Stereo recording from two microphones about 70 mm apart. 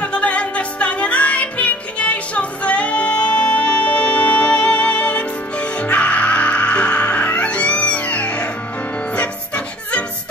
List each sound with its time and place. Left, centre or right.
0.0 s music: centre